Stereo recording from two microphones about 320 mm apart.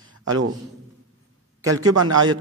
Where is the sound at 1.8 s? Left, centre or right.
Right.